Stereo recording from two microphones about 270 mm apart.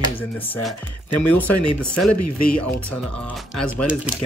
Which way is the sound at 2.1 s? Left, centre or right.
Left.